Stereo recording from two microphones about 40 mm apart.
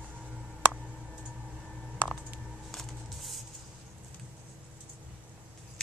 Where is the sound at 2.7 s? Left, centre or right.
Centre.